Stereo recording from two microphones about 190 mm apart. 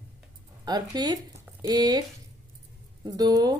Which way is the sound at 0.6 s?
20° right (ahead or behind).